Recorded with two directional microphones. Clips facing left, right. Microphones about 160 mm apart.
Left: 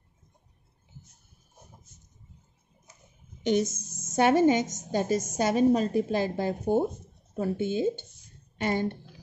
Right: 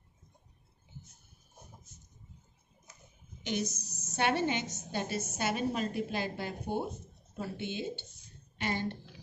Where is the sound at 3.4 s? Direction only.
45° left (ahead or behind).